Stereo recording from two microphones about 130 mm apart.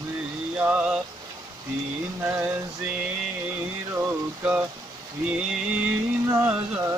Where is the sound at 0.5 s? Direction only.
10° right (ahead or behind).